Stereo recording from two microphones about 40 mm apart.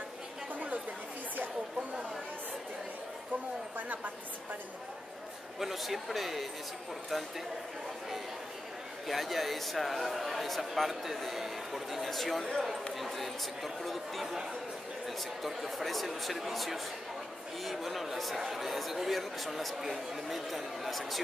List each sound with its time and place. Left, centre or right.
3.7 s a sound: right
5.6 s a man's voice: centre
9.0 s a man's voice: centre
14.2 s a man's voice: centre